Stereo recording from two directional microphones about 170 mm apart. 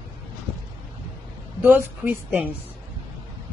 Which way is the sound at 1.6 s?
10° right (ahead or behind).